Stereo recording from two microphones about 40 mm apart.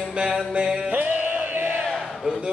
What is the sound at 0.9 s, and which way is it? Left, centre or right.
Music, right.